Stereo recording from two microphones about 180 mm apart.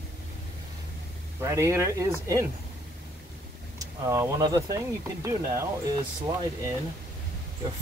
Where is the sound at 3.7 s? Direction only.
15° right (ahead or behind).